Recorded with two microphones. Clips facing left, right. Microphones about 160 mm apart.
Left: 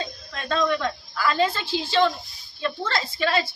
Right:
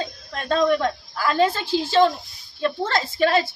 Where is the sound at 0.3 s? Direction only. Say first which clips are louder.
Right 4 dB; 45° right (ahead or behind).